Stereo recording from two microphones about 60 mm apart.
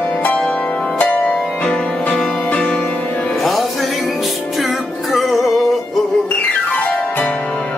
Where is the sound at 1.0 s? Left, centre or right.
Centre.